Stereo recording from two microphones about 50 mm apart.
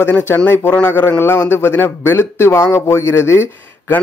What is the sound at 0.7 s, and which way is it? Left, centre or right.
Speech, left.